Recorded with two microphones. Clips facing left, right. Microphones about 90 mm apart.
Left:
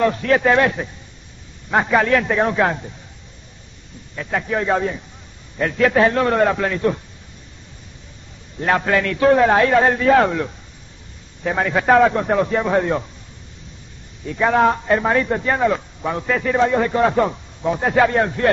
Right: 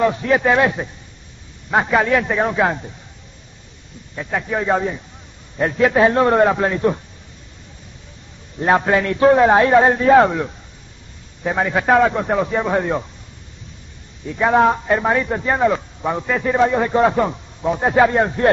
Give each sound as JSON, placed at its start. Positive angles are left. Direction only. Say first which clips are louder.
{"t": 0.0, "sound": "speech", "louder": "even", "side_deg": -15}
{"t": 1.7, "sound": "speech", "louder": "even", "side_deg": -5}
{"t": 4.3, "sound": "speech", "louder": "even", "side_deg": -5}
{"t": 5.6, "sound": "a man's voice", "louder": "right 1 dB", "side_deg": -20}
{"t": 8.5, "sound": "a man's voice", "louder": "right 2 dB", "side_deg": -20}
{"t": 14.2, "sound": "a man's voice", "louder": "right 1 dB", "side_deg": -10}